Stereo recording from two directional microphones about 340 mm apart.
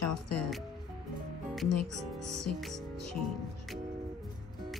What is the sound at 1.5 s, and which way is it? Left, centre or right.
Speech, centre.